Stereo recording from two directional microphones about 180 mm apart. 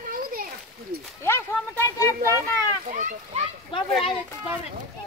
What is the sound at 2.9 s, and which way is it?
Speech, 40° right (ahead or behind).